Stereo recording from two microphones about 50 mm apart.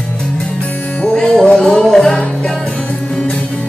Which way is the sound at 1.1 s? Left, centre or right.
Centre.